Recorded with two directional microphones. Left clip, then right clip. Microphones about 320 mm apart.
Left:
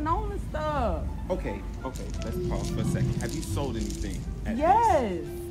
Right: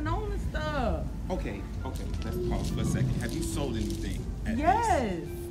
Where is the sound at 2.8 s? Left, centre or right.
Centre.